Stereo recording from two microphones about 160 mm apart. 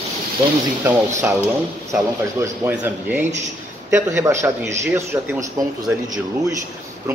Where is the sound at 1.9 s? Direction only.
15° right (ahead or behind).